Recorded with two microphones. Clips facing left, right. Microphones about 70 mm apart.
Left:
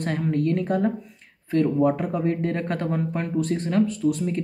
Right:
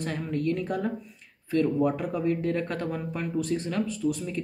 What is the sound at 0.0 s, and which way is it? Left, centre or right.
Speech, left.